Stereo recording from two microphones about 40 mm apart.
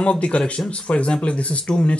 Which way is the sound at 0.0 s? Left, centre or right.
Left.